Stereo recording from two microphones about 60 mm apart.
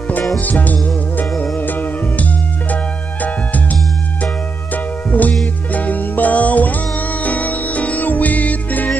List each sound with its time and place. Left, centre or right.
0.4 s music: left
4.7 s music: left